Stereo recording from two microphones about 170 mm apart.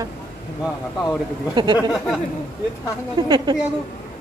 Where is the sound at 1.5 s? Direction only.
25° right (ahead or behind).